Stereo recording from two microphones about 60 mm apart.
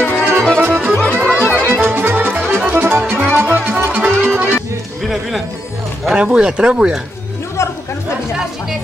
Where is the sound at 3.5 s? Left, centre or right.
Right.